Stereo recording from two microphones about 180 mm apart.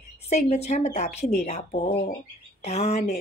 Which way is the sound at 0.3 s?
40° left (ahead or behind).